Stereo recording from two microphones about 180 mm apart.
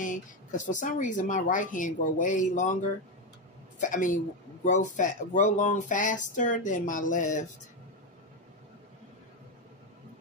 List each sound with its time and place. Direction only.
0.0 s speech: 45° left (ahead or behind)
3.8 s speech: 45° left (ahead or behind)